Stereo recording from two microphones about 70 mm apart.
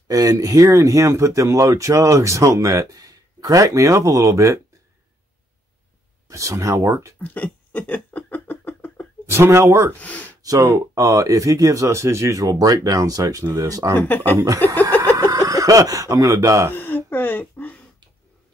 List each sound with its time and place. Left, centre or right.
0.1 s speech: right
6.2 s speech: right
7.2 s a sound: left
9.3 s speech: right
9.9 s speech: left
10.4 s speech: right
13.9 s speech: left
15.1 s speech: right
16.7 s a sound: left